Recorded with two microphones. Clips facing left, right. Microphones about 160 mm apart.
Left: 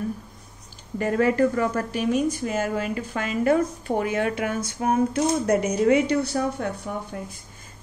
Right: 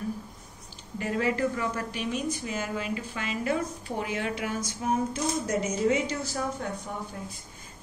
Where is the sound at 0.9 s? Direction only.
50° left (ahead or behind).